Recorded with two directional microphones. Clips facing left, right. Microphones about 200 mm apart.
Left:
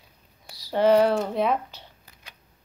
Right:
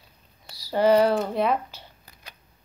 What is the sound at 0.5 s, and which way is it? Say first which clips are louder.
Speech: even; centre (ahead or behind).